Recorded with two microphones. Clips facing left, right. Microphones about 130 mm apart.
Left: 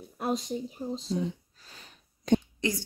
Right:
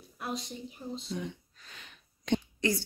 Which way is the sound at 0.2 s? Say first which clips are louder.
Left 7 dB; 45° left (ahead or behind).